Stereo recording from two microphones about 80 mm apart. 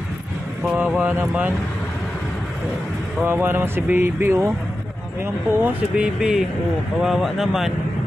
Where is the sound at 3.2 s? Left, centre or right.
Right.